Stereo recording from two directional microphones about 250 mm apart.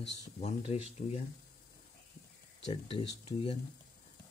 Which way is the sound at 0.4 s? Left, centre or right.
Left.